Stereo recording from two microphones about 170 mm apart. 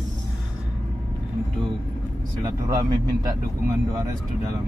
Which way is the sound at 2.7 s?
25° right (ahead or behind).